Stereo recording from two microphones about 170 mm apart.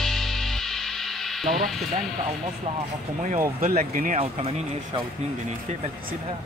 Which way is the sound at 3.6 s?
55° right (ahead or behind).